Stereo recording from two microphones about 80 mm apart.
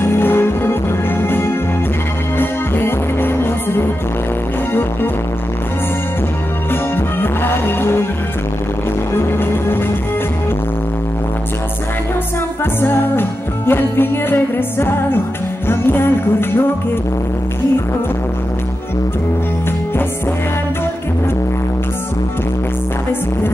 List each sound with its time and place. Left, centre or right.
0.0 s music: left
6.7 s music: left
9.1 s music: left
12.8 s music: left